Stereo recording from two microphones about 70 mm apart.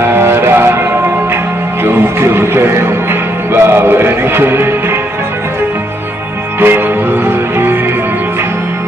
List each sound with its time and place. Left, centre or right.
0.0 s music: right
1.9 s music: right
6.6 s music: right